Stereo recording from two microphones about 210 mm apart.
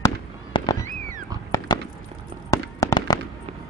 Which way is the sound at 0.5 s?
25° left (ahead or behind).